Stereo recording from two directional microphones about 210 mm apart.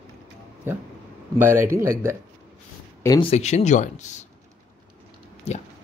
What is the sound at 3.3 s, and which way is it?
Speech, 30° left (ahead or behind).